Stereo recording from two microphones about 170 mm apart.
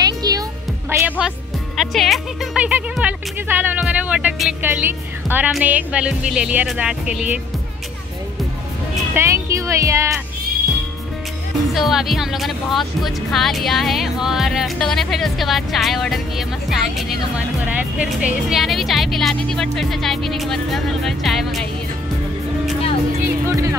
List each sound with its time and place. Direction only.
0.0 s music: 25° right (ahead or behind)
1.8 s speech: centre (ahead or behind)
9.1 s speech: 15° right (ahead or behind)
11.7 s speech: centre (ahead or behind)
23.2 s speech: 20° right (ahead or behind)